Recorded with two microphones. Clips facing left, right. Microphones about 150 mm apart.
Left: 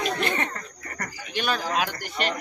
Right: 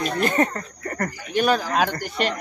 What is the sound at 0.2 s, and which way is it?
Speech, 40° right (ahead or behind).